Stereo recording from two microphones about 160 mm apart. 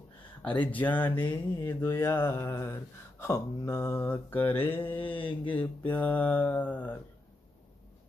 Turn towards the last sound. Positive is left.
turn(degrees=10)  # may be behind; listen again after turning